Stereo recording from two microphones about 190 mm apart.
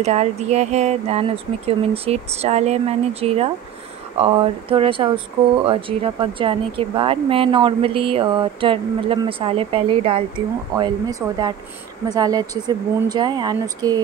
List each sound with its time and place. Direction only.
0.0 s speech: 35° right (ahead or behind); by 14.0 s 20° right (ahead or behind)